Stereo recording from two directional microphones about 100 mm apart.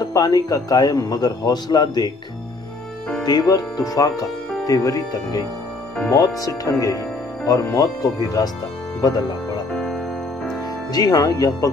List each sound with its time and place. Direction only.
0.0 s a man's voice: 40° left (ahead or behind)
3.3 s a man's voice: 40° left (ahead or behind)
10.9 s a man's voice: 40° left (ahead or behind)